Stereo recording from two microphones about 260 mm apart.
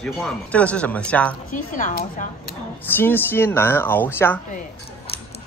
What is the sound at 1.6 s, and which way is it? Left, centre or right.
Speech, left.